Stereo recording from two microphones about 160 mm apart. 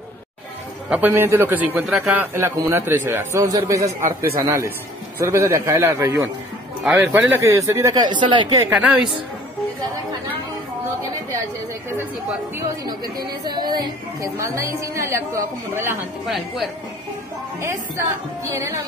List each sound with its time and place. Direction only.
0.8 s a man's voice: 10° right (ahead or behind); by 8.5 s 30° right (ahead or behind)
12.5 s a woman's voice: 25° right (ahead or behind)
16.3 s a woman's voice: centre (ahead or behind)
17.6 s a man's voice: 15° right (ahead or behind)